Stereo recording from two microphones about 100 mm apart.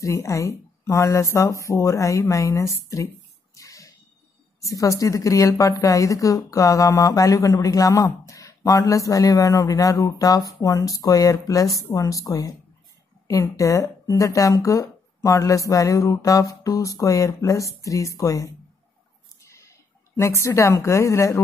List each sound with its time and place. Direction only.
0.0 s a woman's voice: 30° left (ahead or behind)
3.5 s a sound: 35° left (ahead or behind)
4.6 s a woman's voice: 35° left (ahead or behind)